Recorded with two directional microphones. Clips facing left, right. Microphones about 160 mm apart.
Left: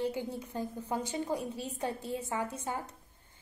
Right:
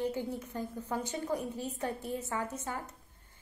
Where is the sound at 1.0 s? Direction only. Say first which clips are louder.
Left 1 dB; 10° left (ahead or behind).